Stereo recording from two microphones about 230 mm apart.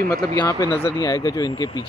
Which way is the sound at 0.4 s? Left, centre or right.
Centre.